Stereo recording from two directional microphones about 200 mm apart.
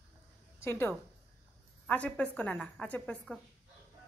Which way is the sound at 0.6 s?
10° left (ahead or behind).